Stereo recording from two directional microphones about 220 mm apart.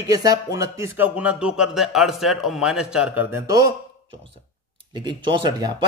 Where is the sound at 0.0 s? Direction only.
15° right (ahead or behind).